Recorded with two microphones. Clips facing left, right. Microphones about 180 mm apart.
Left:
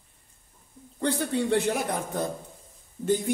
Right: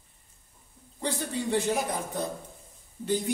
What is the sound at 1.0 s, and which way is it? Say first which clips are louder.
Speech: left 5 dB; 60° left (ahead or behind).